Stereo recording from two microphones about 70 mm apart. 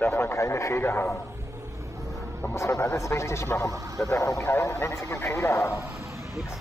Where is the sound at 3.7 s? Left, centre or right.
Right.